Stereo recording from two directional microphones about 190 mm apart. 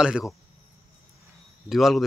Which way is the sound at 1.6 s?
Centre (ahead or behind).